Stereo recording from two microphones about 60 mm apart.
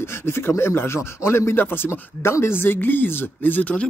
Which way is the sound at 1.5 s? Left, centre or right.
Left.